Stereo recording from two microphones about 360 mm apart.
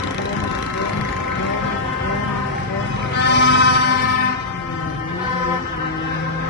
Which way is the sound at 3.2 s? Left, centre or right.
Left.